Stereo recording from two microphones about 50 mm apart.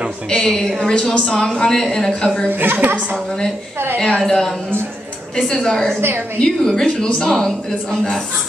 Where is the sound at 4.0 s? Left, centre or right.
Centre.